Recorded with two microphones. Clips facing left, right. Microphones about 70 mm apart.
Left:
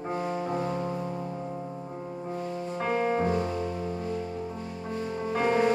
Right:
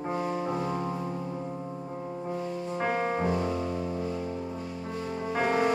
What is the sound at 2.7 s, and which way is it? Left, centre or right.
Music, centre.